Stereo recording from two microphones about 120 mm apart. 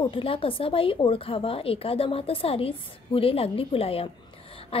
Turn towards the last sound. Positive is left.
turn(degrees=50)  # may be behind; listen again after turning